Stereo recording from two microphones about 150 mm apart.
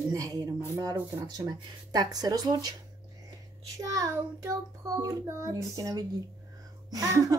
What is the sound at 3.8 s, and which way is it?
Speech, 25° right (ahead or behind).